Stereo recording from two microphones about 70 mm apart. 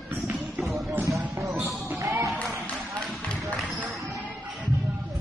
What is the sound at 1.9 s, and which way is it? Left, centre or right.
Music, right.